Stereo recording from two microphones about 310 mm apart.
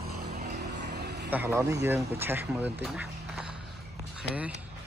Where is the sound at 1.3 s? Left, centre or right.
Centre.